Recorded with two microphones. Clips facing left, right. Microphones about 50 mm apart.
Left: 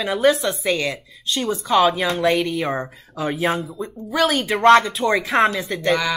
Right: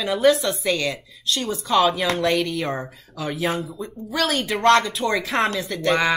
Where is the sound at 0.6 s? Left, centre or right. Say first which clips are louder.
Left 1 dB; left; by 2.8 s centre.